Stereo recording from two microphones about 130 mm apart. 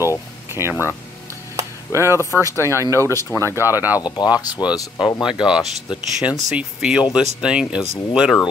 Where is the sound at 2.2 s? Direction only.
20° left (ahead or behind).